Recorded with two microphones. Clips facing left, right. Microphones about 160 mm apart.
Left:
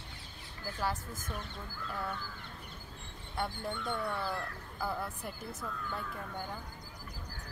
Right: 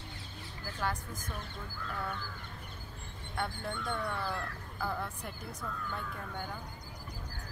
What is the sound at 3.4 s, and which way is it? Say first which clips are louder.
Speech: even; 10° left (ahead or behind).